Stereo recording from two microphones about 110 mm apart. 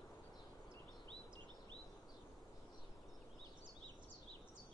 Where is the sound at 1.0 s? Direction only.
45° right (ahead or behind).